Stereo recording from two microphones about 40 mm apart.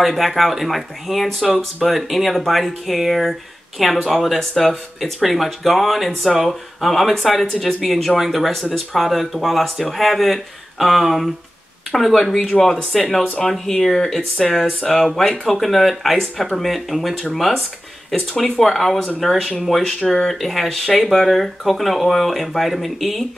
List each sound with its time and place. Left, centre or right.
0.0 s speech: centre
19.8 s speech: left
20.1 s speech: centre